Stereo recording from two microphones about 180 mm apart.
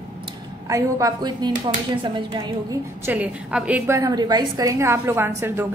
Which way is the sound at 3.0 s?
10° right (ahead or behind).